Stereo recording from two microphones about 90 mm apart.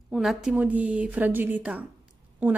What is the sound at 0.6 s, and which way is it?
Speech, 15° right (ahead or behind).